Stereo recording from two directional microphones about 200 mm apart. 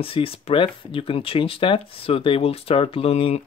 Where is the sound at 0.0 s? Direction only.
25° left (ahead or behind).